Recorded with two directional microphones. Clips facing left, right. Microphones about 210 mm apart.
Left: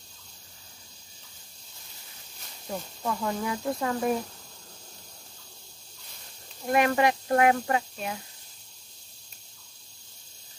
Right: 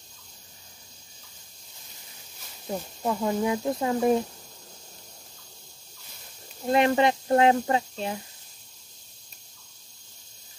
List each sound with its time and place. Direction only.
3.0 s speech: 20° right (ahead or behind)
6.7 s speech: 25° right (ahead or behind)